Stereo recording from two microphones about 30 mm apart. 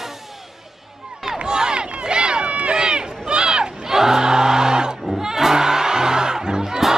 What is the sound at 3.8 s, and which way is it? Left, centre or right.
Music, centre.